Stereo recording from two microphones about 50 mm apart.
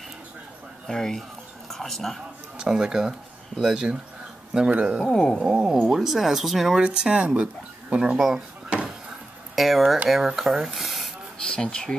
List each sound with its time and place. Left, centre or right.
0.8 s speech: centre
2.6 s speech: centre
5.0 s speech: centre
5.4 s speech: centre
6.8 s speech: centre
9.6 s speech: centre
11.4 s speech: centre